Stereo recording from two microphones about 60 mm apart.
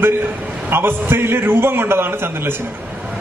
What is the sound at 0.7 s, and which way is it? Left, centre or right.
A man's voice, right.